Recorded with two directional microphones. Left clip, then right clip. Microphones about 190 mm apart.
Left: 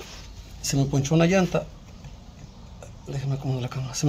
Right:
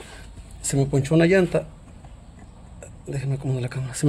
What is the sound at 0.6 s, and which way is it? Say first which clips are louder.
Speech: right 3 dB; 25° right (ahead or behind).